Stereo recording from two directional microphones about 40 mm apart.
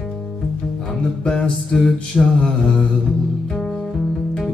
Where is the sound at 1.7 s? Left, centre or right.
Left.